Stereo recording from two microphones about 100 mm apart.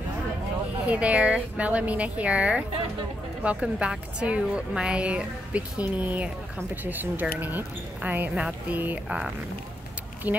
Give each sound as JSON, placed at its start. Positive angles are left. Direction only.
{"t": 0.8, "sound": "a woman's voice", "side_deg": -15}